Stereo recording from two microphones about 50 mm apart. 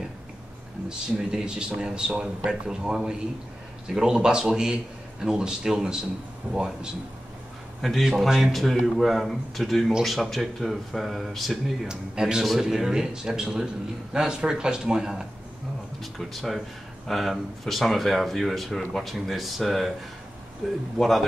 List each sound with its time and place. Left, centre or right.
0.8 s speech: centre
7.8 s speech: centre
11.9 s speech: centre
16.0 s speech: centre